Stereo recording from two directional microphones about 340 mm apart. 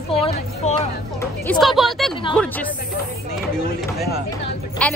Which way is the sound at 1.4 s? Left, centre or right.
Centre.